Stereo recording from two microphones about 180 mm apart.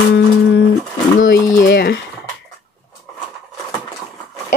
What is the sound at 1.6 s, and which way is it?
Speech, 55° left (ahead or behind).